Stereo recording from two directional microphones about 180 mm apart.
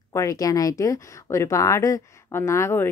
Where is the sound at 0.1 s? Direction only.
15° left (ahead or behind).